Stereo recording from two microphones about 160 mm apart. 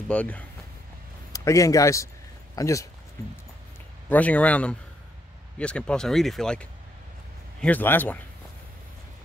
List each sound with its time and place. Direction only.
0.1 s speech: 10° left (ahead or behind)
1.3 s a man's voice: 20° left (ahead or behind)
4.1 s speech: 10° left (ahead or behind)